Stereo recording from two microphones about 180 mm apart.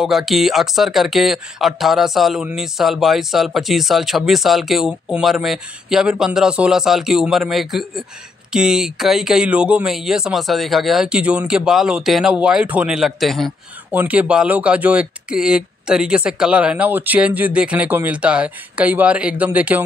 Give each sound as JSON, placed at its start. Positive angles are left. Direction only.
{"t": 0.0, "sound": "speech", "side_deg": 0}